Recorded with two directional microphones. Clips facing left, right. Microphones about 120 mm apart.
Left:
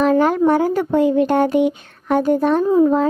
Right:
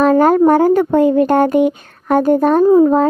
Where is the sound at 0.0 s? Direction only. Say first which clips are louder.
Right 4 dB; 45° right (ahead or behind).